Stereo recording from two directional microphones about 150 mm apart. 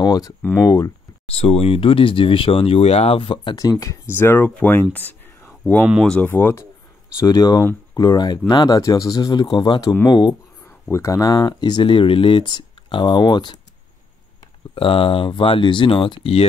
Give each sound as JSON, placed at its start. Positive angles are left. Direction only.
{"t": 0.0, "sound": "a sound", "side_deg": 25}
{"t": 0.4, "sound": "speech", "side_deg": 5}
{"t": 0.7, "sound": "speech", "side_deg": 25}
{"t": 1.3, "sound": "speech", "side_deg": 45}
{"t": 3.8, "sound": "speech", "side_deg": 20}
{"t": 4.9, "sound": "a sound", "side_deg": 15}
{"t": 5.9, "sound": "speech", "side_deg": 0}
{"t": 6.1, "sound": "speech", "side_deg": 10}
{"t": 7.2, "sound": "speech", "side_deg": 25}
{"t": 14.8, "sound": "speech", "side_deg": 35}